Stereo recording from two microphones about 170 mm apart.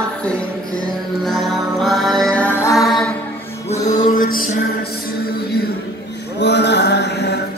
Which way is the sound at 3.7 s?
45° left (ahead or behind).